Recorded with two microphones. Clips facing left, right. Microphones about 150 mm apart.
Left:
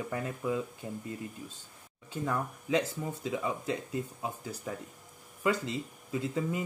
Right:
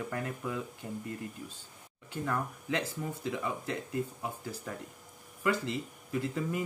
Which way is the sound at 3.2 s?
20° left (ahead or behind).